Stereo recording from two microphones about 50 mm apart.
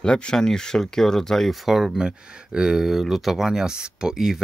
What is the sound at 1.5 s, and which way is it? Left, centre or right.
Speech, centre.